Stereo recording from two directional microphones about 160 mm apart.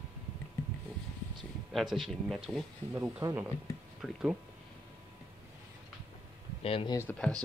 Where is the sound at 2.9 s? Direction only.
15° right (ahead or behind).